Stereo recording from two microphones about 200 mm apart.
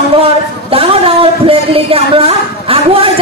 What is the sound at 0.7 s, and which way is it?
A woman's voice, 30° right (ahead or behind).